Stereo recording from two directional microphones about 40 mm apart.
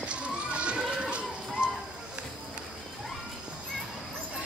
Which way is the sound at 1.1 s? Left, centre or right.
Right.